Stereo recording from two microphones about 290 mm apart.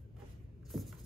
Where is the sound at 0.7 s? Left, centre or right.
Centre.